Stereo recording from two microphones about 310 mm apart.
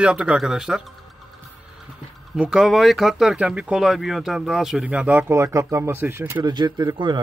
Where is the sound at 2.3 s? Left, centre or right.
Centre.